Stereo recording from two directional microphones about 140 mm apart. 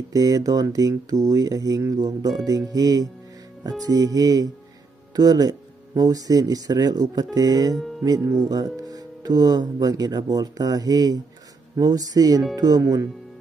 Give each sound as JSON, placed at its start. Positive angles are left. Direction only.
{"t": 0.1, "sound": "speech", "side_deg": -25}